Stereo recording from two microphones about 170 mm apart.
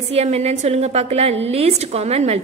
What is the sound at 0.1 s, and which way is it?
A woman's voice, 40° right (ahead or behind).